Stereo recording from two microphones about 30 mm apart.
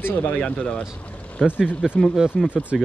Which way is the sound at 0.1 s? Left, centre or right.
Left.